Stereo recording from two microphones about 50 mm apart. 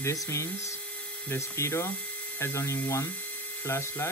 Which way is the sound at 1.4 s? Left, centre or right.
Left.